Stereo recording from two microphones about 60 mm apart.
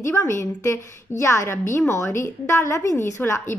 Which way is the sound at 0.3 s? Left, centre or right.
Left.